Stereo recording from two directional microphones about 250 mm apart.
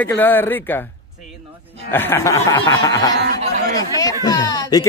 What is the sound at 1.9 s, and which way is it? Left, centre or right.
Speech, centre.